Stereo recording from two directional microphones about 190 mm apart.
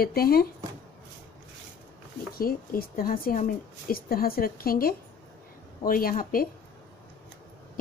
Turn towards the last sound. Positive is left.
turn(degrees=45)  # may be behind; listen again after turning